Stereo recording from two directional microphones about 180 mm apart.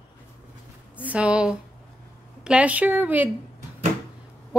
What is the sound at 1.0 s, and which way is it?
A woman's voice, 5° right (ahead or behind).